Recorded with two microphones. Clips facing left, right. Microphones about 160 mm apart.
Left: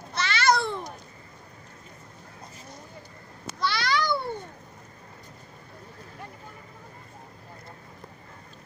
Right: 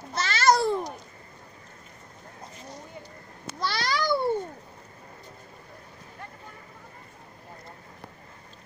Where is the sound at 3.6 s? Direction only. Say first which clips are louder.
Left 2 dB; 40° right (ahead or behind).